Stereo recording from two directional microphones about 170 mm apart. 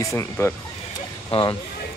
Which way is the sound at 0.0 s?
15° left (ahead or behind).